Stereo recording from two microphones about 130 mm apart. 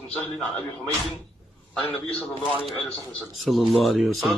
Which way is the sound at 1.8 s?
40° left (ahead or behind).